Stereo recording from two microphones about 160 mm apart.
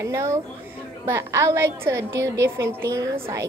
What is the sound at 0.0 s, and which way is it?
A woman's voice, 15° right (ahead or behind).